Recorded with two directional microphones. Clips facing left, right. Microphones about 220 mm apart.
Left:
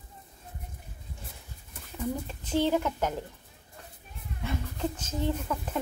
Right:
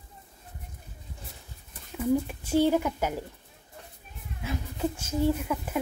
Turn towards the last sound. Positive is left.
turn(degrees=-10)  # may be behind; listen again after turning